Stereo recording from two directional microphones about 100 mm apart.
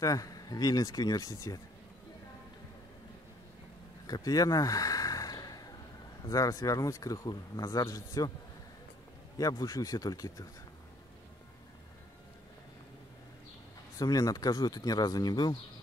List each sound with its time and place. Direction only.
0.0 s speech: 35° left (ahead or behind)
4.1 s a sound: 40° left (ahead or behind)
6.2 s speech: 35° left (ahead or behind)
9.4 s speech: 35° left (ahead or behind)
13.9 s speech: 35° left (ahead or behind)